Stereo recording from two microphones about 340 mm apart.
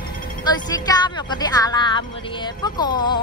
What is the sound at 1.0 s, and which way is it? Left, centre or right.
Speech, centre.